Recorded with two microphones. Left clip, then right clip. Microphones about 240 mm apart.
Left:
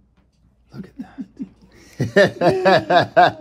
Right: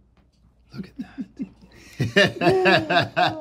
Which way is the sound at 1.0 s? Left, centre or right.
Centre.